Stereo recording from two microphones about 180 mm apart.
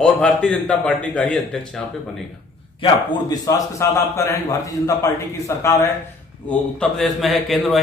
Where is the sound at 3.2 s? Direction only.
20° left (ahead or behind).